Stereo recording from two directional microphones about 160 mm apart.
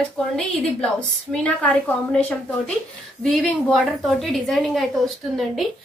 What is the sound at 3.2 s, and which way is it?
A woman's voice, centre (ahead or behind).